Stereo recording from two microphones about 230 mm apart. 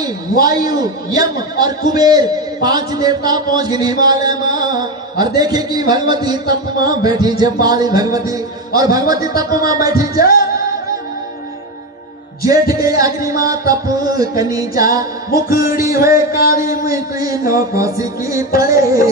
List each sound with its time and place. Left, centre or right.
0.0 s a man's voice: centre
12.4 s a man's voice: centre